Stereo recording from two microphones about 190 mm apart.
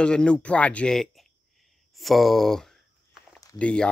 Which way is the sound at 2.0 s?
Centre (ahead or behind).